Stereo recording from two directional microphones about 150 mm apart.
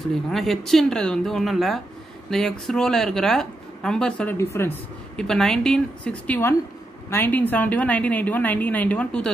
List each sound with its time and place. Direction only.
0.1 s speech: centre (ahead or behind)
4.4 s a woman's voice: 15° left (ahead or behind)
5.1 s a woman's voice: 5° left (ahead or behind)